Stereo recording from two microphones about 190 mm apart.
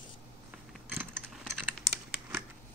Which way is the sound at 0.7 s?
10° right (ahead or behind).